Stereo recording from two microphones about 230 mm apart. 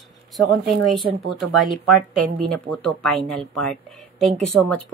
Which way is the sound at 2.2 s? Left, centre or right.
Centre.